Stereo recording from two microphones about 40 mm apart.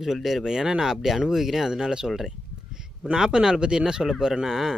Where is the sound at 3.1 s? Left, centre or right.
Centre.